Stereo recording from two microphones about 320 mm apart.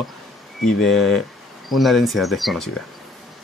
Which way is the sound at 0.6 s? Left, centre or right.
Centre.